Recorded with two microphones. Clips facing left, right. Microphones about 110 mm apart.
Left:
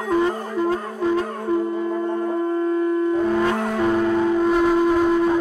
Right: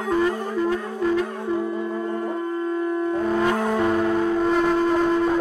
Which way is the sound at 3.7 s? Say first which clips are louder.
Left 1 dB; centre (ahead or behind).